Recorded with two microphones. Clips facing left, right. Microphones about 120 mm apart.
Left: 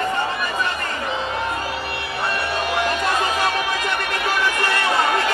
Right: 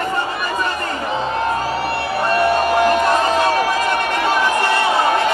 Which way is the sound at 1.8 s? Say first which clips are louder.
Right 7 dB; 40° right (ahead or behind).